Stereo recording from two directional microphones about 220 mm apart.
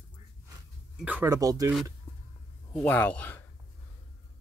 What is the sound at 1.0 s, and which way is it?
Speech, 10° right (ahead or behind).